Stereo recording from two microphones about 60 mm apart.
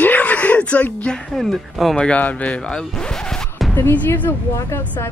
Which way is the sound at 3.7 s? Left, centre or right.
Left.